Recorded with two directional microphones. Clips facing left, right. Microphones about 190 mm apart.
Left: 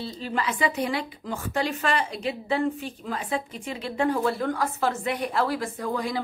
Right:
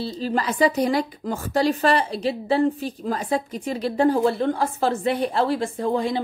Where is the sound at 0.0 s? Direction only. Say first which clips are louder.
Right 5 dB; 35° right (ahead or behind).